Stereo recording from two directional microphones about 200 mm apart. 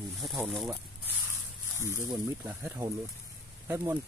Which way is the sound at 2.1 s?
15° right (ahead or behind).